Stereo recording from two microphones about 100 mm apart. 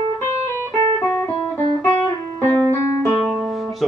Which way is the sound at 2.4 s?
30° left (ahead or behind).